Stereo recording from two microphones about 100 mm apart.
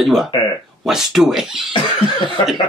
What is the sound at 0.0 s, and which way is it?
Speech, centre (ahead or behind).